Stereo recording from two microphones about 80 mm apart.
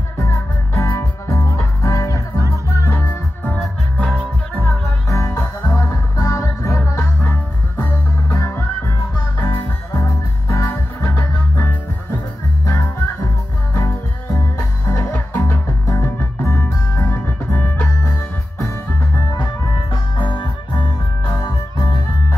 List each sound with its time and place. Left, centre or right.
0.2 s music: left
2.9 s music: left
5.1 s music: left
6.8 s music: left
8.4 s music: left
10.7 s music: left
12.7 s music: left
13.7 s music: left
15.1 s music: left
19.3 s music: left